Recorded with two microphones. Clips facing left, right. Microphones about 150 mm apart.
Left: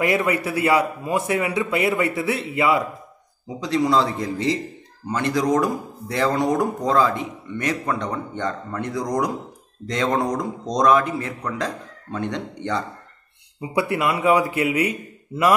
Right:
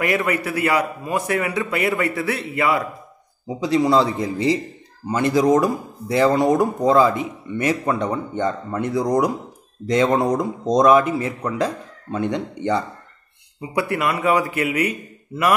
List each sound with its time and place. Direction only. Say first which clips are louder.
0.0 s a man's voice: even; 25° left (ahead or behind)
3.4 s speech: right 3 dB; 5° right (ahead or behind)
13.6 s a man's voice: even; 20° left (ahead or behind)